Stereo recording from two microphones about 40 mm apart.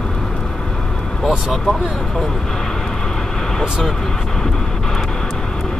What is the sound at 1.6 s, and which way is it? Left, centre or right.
Speech, centre.